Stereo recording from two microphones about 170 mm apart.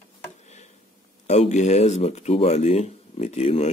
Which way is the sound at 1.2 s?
40° left (ahead or behind).